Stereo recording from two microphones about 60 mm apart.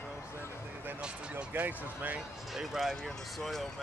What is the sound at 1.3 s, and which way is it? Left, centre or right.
Speech, right.